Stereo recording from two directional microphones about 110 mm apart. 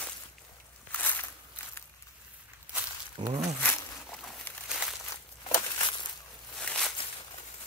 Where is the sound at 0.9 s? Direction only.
15° left (ahead or behind).